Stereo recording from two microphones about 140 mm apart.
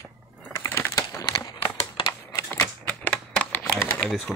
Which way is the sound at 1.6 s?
35° left (ahead or behind).